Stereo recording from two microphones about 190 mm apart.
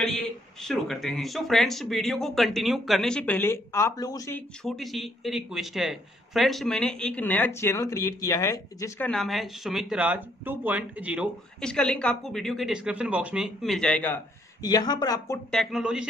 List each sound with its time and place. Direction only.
0.0 s speech: centre (ahead or behind)
4.6 s speech: centre (ahead or behind)
9.1 s speech: centre (ahead or behind)
11.6 s speech: 5° left (ahead or behind)
14.6 s speech: 20° left (ahead or behind)
15.5 s speech: centre (ahead or behind)